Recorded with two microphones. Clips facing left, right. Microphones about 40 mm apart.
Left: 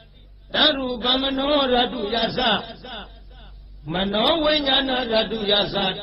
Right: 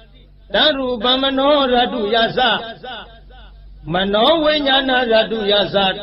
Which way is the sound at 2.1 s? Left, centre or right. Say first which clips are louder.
Right 6 dB; right.